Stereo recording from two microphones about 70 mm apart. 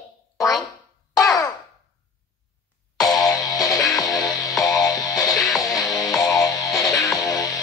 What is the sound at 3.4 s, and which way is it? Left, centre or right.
Music, left.